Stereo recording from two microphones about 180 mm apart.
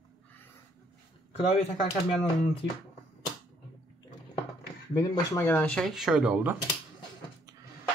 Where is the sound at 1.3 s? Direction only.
35° left (ahead or behind).